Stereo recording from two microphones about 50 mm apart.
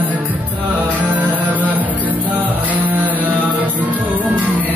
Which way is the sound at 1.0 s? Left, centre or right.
Right.